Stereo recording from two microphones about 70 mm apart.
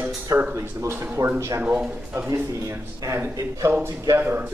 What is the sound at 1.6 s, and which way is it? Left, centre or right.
Speech, centre.